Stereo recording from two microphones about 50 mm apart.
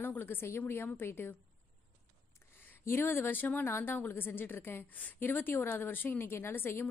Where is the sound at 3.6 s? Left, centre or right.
Left.